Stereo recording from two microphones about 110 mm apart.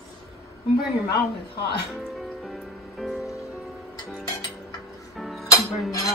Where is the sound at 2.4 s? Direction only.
Centre (ahead or behind).